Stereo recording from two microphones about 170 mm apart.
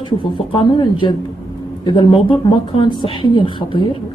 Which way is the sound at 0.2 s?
30° left (ahead or behind).